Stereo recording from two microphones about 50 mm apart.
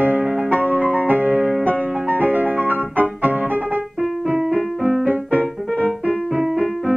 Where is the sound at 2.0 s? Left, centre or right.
Right.